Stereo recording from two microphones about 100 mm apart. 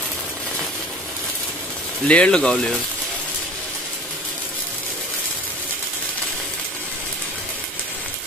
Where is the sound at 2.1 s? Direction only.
10° left (ahead or behind).